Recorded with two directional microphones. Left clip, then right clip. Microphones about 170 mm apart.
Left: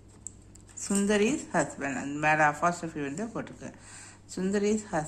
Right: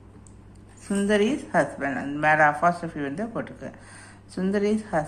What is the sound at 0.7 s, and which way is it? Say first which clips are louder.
A woman's voice: right 4 dB; 35° left (ahead or behind).